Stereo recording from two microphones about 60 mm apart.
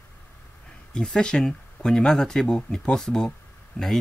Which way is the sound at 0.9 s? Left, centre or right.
Centre.